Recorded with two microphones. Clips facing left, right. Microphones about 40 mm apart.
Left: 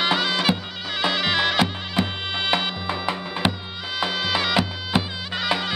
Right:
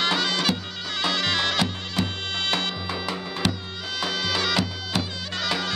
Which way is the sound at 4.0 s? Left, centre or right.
Centre.